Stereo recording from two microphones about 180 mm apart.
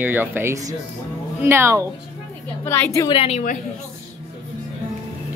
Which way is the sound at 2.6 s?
10° left (ahead or behind).